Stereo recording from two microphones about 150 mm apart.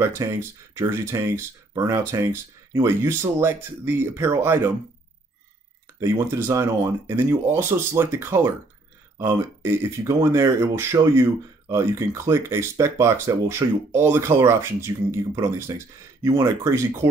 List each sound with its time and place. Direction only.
0.0 s speech: 20° right (ahead or behind)
5.9 s speech: 20° right (ahead or behind)